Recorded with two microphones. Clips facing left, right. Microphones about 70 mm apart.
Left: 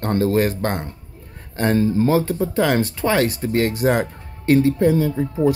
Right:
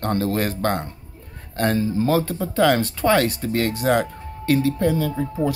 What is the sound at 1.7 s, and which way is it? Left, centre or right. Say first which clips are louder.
Speech: left 8 dB; left.